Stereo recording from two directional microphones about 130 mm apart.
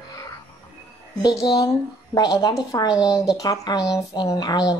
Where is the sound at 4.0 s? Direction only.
30° left (ahead or behind).